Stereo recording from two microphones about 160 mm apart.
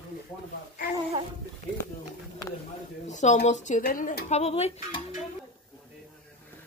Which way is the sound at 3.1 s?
50° left (ahead or behind).